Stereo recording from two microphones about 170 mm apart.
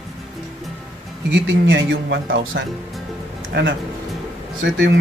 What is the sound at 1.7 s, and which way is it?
Speech, 90° right.